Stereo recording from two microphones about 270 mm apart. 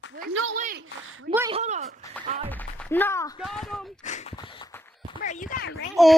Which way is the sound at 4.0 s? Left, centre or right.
Left.